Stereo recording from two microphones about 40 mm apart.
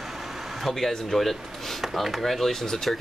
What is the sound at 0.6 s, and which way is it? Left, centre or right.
Speech, centre.